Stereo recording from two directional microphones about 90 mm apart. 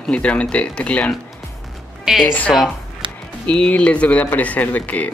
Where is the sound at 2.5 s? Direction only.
5° left (ahead or behind).